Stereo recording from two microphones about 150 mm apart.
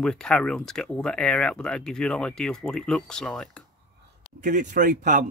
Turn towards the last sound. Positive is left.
turn(degrees=-60)  # may be behind; listen again after turning